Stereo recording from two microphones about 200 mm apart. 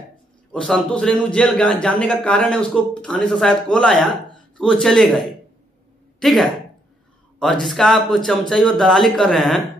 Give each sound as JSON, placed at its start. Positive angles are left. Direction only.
{"t": 0.5, "sound": "a man's voice", "side_deg": 5}
{"t": 6.1, "sound": "a woman's voice", "side_deg": 0}
{"t": 7.6, "sound": "a man's voice", "side_deg": 0}